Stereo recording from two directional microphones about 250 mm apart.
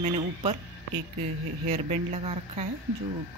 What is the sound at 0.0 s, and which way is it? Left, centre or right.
Speech, right.